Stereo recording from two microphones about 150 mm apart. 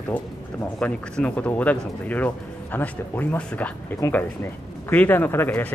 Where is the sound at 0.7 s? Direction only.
5° left (ahead or behind).